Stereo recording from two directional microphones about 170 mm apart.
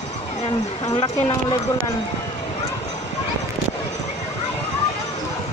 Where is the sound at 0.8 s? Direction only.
30° left (ahead or behind).